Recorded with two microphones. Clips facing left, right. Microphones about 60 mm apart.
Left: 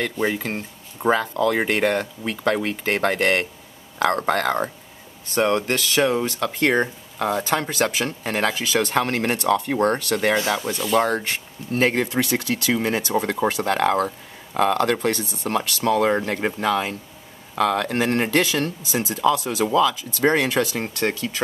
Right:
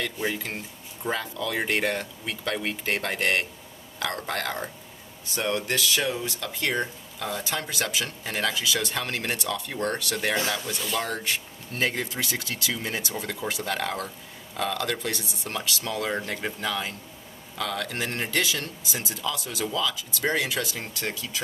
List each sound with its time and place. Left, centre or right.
0.0 s speech: left
10.3 s speech: left
11.0 s speech: left